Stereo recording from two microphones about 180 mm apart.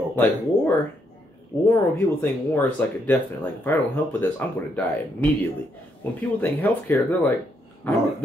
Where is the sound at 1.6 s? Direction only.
15° left (ahead or behind).